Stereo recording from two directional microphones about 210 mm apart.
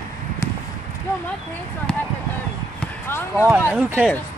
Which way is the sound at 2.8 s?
10° left (ahead or behind).